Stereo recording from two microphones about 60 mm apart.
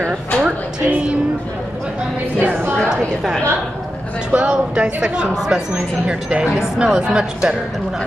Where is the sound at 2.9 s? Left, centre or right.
Centre.